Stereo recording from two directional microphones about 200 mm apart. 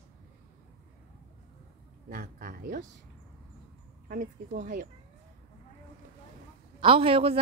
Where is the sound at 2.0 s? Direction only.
45° right (ahead or behind).